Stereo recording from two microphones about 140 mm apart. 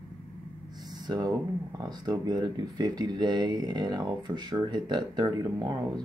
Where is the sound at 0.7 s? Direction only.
30° right (ahead or behind).